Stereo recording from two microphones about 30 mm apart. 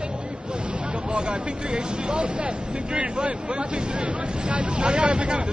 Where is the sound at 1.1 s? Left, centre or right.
Right.